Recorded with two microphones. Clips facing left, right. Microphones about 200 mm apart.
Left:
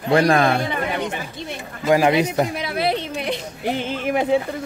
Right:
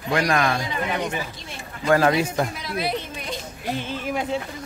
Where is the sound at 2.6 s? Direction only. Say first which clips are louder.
Left 5 dB; 65° left (ahead or behind).